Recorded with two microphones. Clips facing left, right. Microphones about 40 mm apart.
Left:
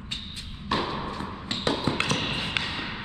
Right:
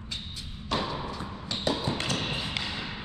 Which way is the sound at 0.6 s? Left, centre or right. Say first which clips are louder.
Left 3 dB; left.